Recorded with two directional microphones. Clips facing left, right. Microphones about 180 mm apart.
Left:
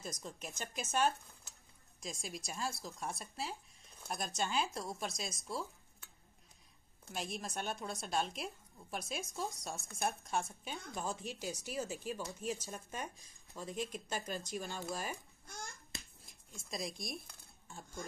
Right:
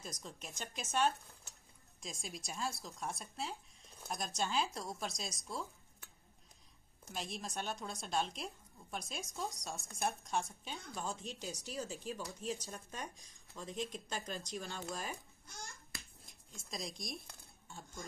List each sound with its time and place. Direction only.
0.0 s speech: centre (ahead or behind)
7.1 s speech: centre (ahead or behind)
15.9 s hands: 25° left (ahead or behind)
16.7 s speech: centre (ahead or behind)